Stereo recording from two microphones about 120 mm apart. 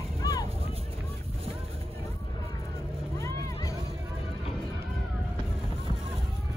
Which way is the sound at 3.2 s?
25° left (ahead or behind).